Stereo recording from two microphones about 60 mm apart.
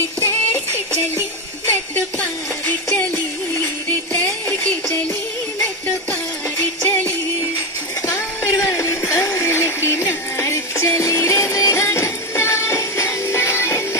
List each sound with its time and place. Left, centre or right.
0.2 s music: left
4.2 s music: left
6.8 s music: left
8.1 s music: left